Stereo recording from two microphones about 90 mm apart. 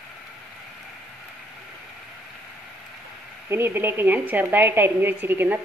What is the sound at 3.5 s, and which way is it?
A woman's voice, 25° right (ahead or behind).